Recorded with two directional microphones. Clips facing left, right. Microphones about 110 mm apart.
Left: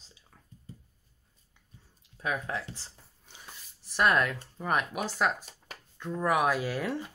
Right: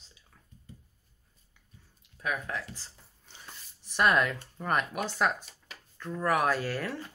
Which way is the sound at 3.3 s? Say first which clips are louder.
Even; 5° left (ahead or behind).